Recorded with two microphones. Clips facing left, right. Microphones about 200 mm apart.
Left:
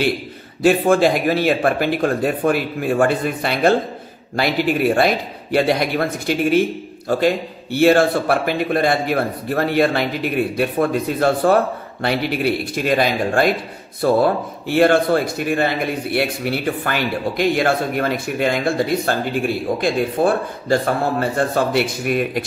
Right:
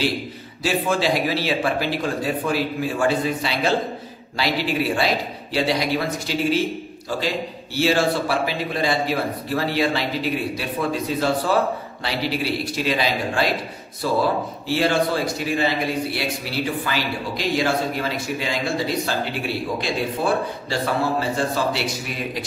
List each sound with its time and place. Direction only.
0.6 s a man's voice: 55° left (ahead or behind)